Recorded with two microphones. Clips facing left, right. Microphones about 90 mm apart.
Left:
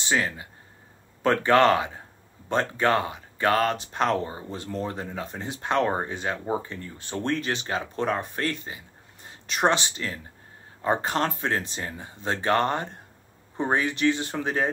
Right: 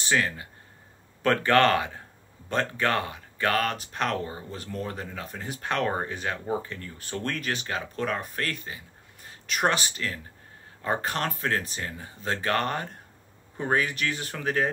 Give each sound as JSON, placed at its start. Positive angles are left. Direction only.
{"t": 0.0, "sound": "speech", "side_deg": 20}